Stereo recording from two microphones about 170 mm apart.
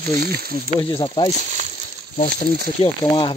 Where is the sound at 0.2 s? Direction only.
65° right (ahead or behind).